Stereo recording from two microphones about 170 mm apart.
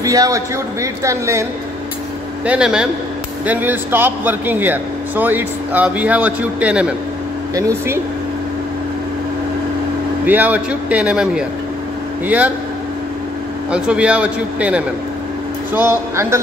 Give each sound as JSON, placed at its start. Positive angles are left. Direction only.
{"t": 0.0, "sound": "a man's voice", "side_deg": -20}
{"t": 2.4, "sound": "a man's voice", "side_deg": -5}
{"t": 10.2, "sound": "speech", "side_deg": -10}
{"t": 13.7, "sound": "speech", "side_deg": -5}